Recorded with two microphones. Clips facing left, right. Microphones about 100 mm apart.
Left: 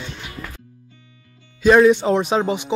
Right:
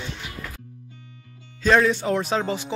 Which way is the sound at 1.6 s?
15° left (ahead or behind).